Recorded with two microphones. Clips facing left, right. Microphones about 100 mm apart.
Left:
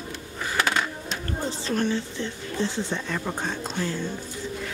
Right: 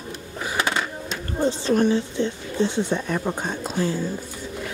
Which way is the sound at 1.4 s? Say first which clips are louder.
Right 7 dB; 15° right (ahead or behind).